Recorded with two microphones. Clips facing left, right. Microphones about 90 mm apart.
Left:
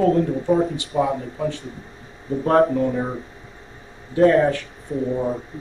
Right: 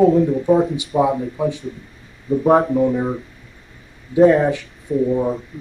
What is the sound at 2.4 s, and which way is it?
Speech, 5° right (ahead or behind).